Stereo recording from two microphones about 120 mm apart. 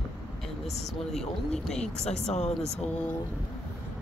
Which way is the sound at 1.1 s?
5° left (ahead or behind).